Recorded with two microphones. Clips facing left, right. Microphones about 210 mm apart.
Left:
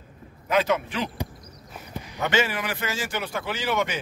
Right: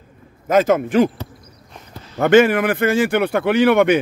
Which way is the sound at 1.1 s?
15° left (ahead or behind).